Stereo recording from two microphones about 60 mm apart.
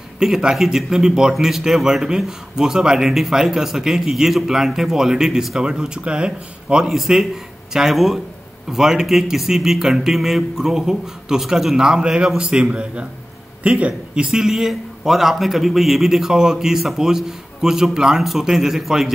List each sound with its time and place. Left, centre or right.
0.2 s speech: centre
6.9 s speech: centre